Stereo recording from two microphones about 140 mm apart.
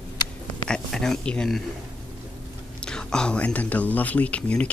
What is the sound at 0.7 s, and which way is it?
Speech, 5° left (ahead or behind).